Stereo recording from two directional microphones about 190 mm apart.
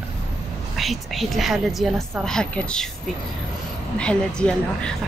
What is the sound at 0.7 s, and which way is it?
A woman's voice, centre (ahead or behind).